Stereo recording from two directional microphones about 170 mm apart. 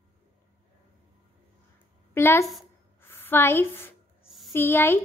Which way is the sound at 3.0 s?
15° left (ahead or behind).